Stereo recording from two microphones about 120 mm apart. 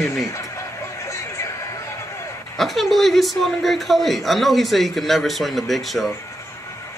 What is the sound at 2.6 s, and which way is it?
Speech, centre (ahead or behind).